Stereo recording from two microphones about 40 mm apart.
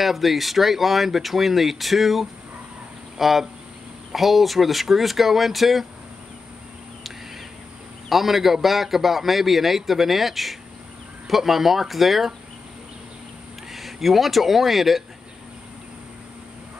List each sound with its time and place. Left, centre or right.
0.0 s a man's voice: centre
8.1 s a man's voice: centre
13.7 s speech: centre